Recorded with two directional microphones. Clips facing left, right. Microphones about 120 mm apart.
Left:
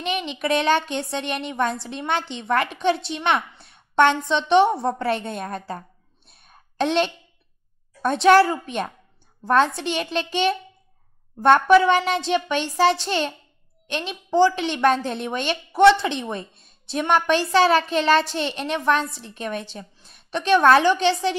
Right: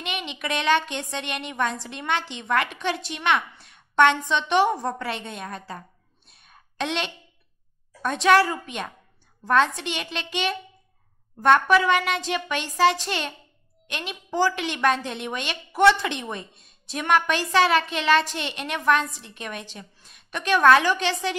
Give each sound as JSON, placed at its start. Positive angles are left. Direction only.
{"t": 0.0, "sound": "a woman's voice", "side_deg": 35}
{"t": 6.3, "sound": "a sound", "side_deg": 40}
{"t": 8.0, "sound": "a woman's voice", "side_deg": 35}